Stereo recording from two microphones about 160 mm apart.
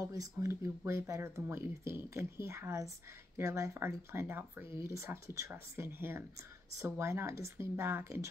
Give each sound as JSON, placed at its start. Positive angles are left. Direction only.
{"t": 0.1, "sound": "speech", "side_deg": -20}